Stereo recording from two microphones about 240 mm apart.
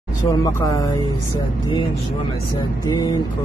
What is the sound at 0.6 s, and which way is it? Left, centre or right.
Speech, centre.